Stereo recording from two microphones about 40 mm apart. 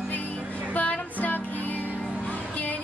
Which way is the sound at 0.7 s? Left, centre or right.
Left.